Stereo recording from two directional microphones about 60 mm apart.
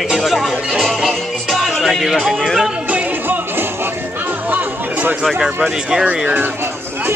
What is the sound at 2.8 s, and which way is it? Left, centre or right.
Music, right.